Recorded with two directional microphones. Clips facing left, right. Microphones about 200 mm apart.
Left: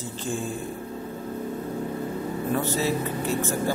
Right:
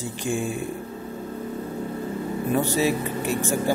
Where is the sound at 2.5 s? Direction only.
15° right (ahead or behind).